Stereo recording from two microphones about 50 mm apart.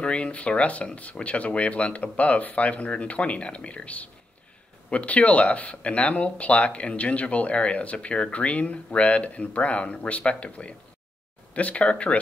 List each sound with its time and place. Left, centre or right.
0.0 s speech: left